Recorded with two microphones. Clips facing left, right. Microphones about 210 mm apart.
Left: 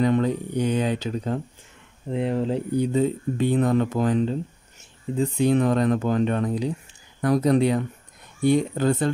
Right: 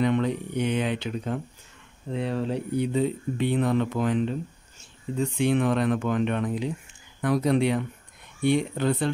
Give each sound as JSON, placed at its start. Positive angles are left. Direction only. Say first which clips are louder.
{"t": 0.0, "sound": "speech", "louder": "left 3 dB", "side_deg": 40}
{"t": 2.1, "sound": "speech", "louder": "left 4 dB", "side_deg": 20}
{"t": 2.7, "sound": "speech", "louder": "left 3 dB", "side_deg": 40}
{"t": 5.1, "sound": "speech", "louder": "left 3 dB", "side_deg": 20}
{"t": 5.4, "sound": "speech", "louder": "left 3 dB", "side_deg": 40}